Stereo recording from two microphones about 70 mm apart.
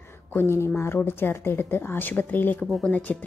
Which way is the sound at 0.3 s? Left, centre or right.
Left.